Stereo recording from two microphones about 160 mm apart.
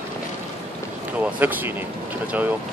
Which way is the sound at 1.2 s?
10° right (ahead or behind).